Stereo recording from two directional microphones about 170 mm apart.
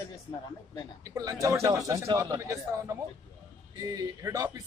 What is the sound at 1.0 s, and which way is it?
Speech, 20° right (ahead or behind).